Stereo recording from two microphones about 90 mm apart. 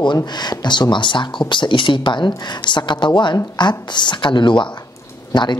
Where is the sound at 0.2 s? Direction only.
50° left (ahead or behind).